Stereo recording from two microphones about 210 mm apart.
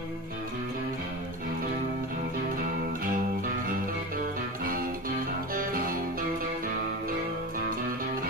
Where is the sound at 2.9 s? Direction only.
45° right (ahead or behind).